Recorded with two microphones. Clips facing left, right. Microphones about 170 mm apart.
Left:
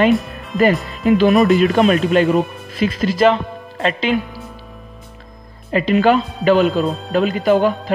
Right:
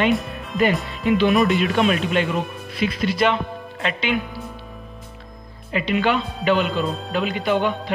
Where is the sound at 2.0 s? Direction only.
40° left (ahead or behind).